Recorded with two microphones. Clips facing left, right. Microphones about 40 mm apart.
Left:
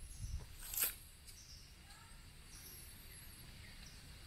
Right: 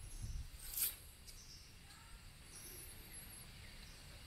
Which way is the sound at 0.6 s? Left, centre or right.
Left.